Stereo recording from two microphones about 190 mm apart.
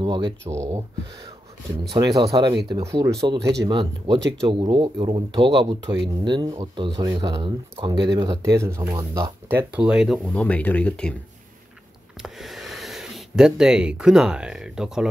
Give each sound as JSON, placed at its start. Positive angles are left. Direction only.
{"t": 0.0, "sound": "speech", "side_deg": -25}
{"t": 1.9, "sound": "speech", "side_deg": -25}
{"t": 3.3, "sound": "speech", "side_deg": -65}
{"t": 3.6, "sound": "speech", "side_deg": -25}
{"t": 12.2, "sound": "a sound", "side_deg": 0}